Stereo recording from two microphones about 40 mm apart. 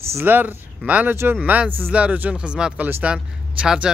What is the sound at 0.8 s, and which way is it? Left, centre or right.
Speech, right.